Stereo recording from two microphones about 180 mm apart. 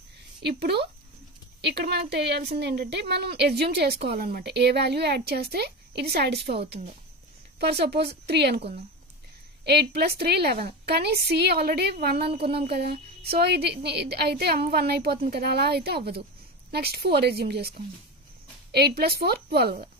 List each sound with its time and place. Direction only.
0.4 s a woman's voice: 65° right (ahead or behind)
9.7 s a woman's voice: 65° right (ahead or behind)